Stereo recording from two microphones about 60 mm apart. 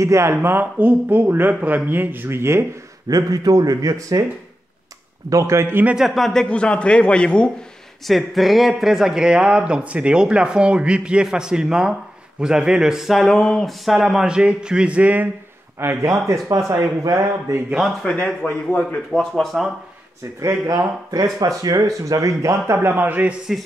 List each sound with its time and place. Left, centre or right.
0.0 s speech: right
3.1 s speech: right
5.3 s speech: right
5.9 s a man's voice: centre
6.4 s a man's voice: centre
8.1 s speech: centre
13.7 s speech: centre; by 15.2 s right
15.8 s speech: right
16.4 s speech: right
18.0 s a man's voice: left
19.1 s speech: centre
20.3 s speech: right
22.8 s speech: right